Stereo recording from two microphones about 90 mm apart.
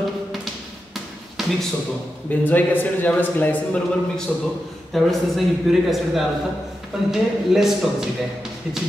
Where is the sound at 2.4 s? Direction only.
20° left (ahead or behind).